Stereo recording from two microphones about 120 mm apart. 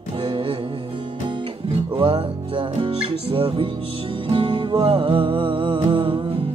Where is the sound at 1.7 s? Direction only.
45° right (ahead or behind).